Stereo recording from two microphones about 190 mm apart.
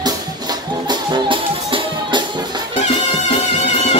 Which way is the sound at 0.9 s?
25° right (ahead or behind).